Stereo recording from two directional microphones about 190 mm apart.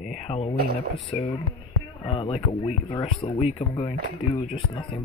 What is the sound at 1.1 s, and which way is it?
Speech, 30° left (ahead or behind).